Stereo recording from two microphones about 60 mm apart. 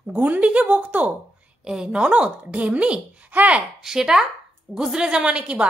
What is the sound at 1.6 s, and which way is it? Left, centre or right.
Speech, centre.